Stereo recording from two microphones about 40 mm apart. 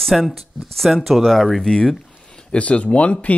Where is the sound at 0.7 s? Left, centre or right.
Centre.